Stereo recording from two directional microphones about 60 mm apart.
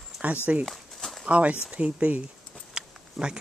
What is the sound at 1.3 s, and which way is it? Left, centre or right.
Speech, right.